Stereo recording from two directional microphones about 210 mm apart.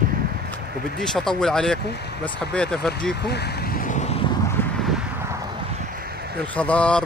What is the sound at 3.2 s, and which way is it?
Speech, 50° left (ahead or behind).